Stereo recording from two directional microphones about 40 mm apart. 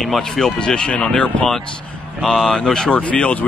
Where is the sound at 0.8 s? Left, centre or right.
Left.